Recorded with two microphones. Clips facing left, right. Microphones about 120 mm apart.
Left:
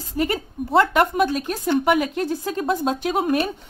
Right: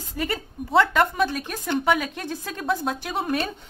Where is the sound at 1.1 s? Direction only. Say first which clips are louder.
Left 4 dB; 15° left (ahead or behind).